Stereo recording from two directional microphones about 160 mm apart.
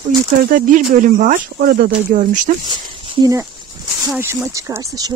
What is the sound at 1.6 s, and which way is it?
Speech, 70° right (ahead or behind).